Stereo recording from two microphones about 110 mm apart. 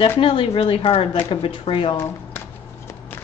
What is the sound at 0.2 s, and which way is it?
A woman's voice, 55° left (ahead or behind).